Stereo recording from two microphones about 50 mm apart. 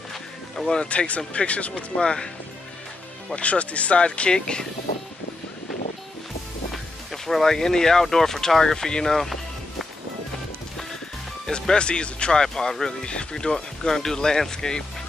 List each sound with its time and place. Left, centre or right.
0.7 s speech: left
3.3 s speech: left
6.7 s speech: centre
11.6 s speech: centre